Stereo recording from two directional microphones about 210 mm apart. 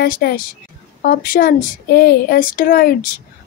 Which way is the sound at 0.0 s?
50° left (ahead or behind).